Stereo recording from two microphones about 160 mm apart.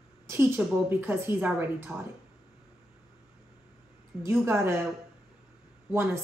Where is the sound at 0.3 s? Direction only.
15° right (ahead or behind).